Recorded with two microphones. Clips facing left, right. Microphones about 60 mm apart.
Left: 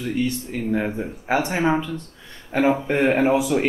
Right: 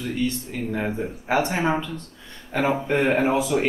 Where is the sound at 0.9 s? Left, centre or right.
Centre.